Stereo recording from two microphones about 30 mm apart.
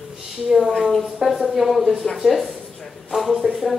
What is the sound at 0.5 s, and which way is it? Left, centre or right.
Speech, centre.